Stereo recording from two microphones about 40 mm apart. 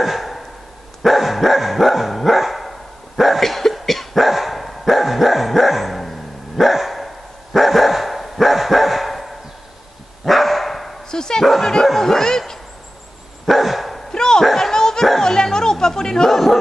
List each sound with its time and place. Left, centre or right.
0.0 s a sound: centre
1.0 s dog: centre
11.1 s dog: centre
12.0 s bow-wow: centre
13.5 s dog: centre
14.1 s a sound: centre
14.4 s children playing: centre
15.0 s a sound: centre
16.3 s bow-wow: centre